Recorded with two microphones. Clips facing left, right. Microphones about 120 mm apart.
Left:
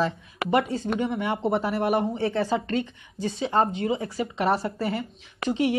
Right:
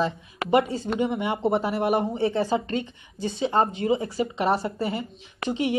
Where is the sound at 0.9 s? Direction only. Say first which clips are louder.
Right 1 dB; 20° right (ahead or behind).